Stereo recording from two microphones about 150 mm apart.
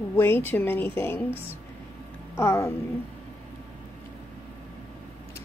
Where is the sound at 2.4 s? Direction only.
20° left (ahead or behind).